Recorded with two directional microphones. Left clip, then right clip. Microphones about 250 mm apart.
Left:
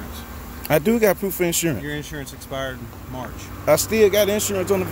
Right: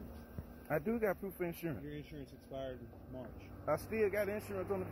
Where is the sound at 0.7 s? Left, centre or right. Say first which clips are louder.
Left 18 dB; left.